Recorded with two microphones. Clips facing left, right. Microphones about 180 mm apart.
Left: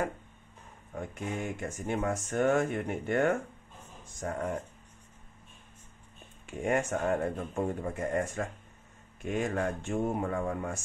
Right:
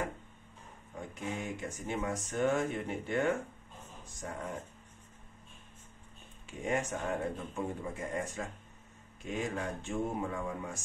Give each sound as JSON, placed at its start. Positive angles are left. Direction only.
{"t": 0.9, "sound": "speech", "side_deg": 55}
{"t": 6.4, "sound": "speech", "side_deg": 55}